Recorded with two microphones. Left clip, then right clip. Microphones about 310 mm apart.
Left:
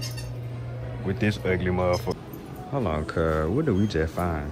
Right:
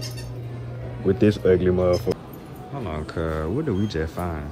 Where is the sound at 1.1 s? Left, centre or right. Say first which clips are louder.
Right 8 dB; centre.